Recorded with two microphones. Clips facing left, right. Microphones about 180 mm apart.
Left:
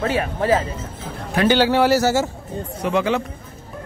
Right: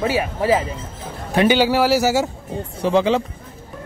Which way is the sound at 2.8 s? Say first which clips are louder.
Right 3 dB; 30° right (ahead or behind).